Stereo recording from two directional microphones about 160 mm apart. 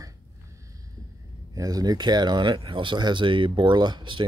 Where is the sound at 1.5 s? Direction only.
20° right (ahead or behind).